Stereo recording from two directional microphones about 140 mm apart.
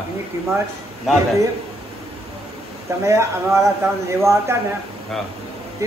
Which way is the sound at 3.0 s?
20° right (ahead or behind).